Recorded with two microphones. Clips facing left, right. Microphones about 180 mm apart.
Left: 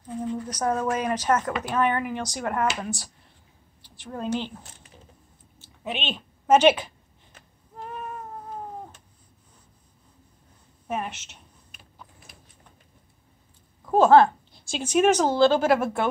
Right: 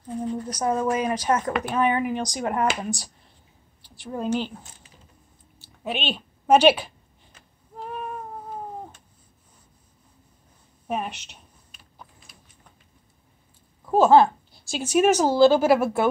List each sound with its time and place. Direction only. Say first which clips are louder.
0.5 s a woman's voice: right 2 dB; 10° right (ahead or behind)
5.9 s a woman's voice: right 3 dB; 10° right (ahead or behind)
10.9 s a woman's voice: right 2 dB; 15° right (ahead or behind)
13.8 s a woman's voice: even; 5° right (ahead or behind)